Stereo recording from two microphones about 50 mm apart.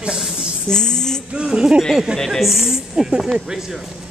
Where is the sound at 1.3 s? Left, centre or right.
Right.